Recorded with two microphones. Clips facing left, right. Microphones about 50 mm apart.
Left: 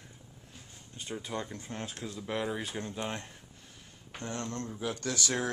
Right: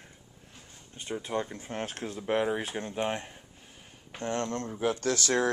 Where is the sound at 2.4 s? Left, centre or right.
Right.